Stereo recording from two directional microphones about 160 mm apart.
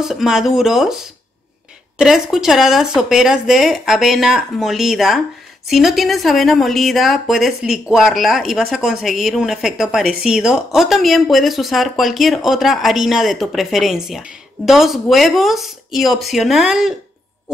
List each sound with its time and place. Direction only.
0.0 s a woman's voice: 5° right (ahead or behind)
2.0 s a woman's voice: 5° right (ahead or behind)